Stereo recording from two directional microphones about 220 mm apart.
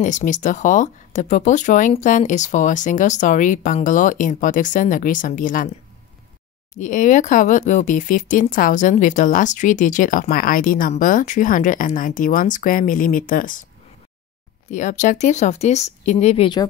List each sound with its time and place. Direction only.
0.0 s speech: 35° left (ahead or behind)
6.7 s speech: 35° left (ahead or behind)
14.7 s speech: 35° left (ahead or behind)